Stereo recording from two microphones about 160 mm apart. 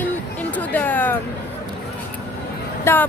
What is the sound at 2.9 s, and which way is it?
Speech, 15° left (ahead or behind).